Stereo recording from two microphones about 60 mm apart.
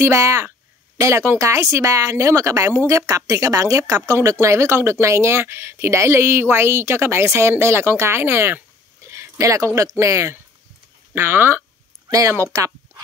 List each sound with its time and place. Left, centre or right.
0.0 s speech: right
9.0 s a sound: right
9.8 s speech: right
11.1 s speech: right
12.1 s speech: right
12.5 s a sound: right